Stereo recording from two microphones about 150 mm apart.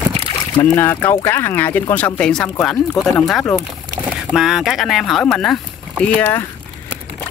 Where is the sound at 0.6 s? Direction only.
15° left (ahead or behind).